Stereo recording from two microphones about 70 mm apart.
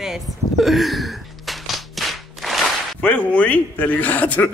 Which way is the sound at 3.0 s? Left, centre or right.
Left.